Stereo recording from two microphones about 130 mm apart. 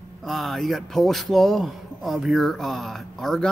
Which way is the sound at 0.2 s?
Centre (ahead or behind).